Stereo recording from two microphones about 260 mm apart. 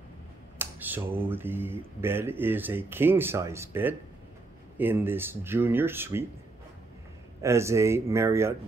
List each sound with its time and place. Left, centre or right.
0.6 s speech: centre
7.4 s speech: centre